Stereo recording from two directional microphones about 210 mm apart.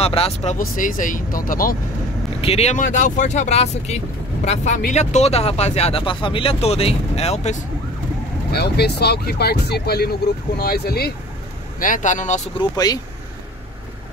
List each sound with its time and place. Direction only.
0.0 s speech: 30° left (ahead or behind)
2.4 s speech: 30° left (ahead or behind)
8.5 s speech: 50° left (ahead or behind)
12.5 s speech: 20° left (ahead or behind)